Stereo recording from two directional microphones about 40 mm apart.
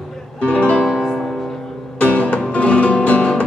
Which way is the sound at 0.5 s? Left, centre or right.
Left.